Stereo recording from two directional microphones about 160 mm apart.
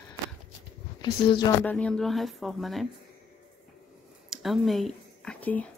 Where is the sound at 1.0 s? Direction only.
25° left (ahead or behind).